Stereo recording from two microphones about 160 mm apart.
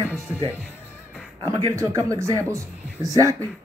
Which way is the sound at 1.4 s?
20° right (ahead or behind).